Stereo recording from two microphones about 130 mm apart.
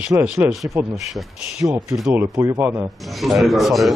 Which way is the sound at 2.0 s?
20° right (ahead or behind).